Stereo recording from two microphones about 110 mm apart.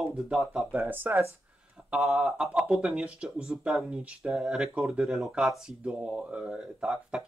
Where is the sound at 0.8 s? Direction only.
20° right (ahead or behind).